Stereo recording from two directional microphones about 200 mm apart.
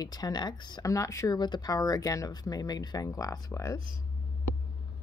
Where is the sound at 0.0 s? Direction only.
20° left (ahead or behind).